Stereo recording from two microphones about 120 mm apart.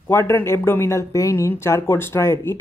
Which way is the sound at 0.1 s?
20° left (ahead or behind).